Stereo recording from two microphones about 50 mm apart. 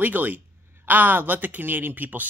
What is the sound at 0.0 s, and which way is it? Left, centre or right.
Speech, right.